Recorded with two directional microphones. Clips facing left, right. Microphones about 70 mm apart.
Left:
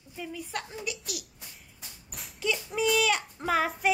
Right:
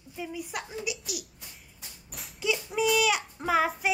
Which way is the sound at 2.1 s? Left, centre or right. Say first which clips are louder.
Right 1 dB; centre.